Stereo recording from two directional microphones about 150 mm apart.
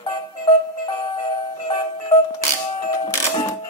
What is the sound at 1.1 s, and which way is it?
Music, 35° left (ahead or behind).